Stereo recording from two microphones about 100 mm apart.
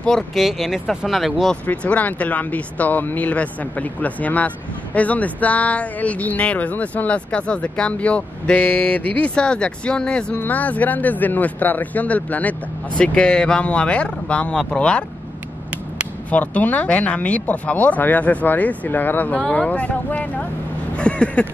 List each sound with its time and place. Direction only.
0.0 s speech: 5° left (ahead or behind)
1.7 s speech: 15° left (ahead or behind)
16.3 s speech: 15° left (ahead or behind)